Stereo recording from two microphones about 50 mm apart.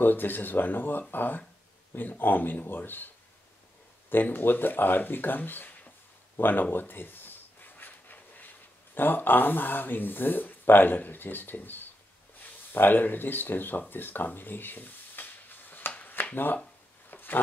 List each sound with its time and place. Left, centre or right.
0.0 s speech: left
4.1 s speech: left
16.2 s a sound: left